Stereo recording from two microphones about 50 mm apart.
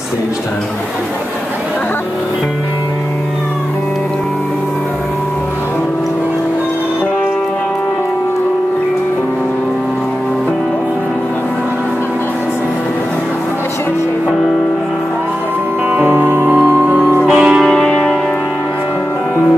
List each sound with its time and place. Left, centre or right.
16.1 s music: right
17.3 s music: centre
17.6 s music: centre